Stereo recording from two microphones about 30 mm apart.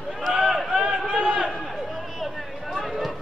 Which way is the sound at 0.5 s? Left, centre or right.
Centre.